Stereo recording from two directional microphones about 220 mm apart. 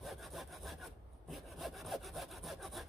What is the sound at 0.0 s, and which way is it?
Sawing, centre (ahead or behind).